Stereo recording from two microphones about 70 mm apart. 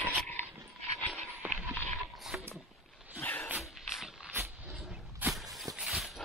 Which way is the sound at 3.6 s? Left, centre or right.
Centre.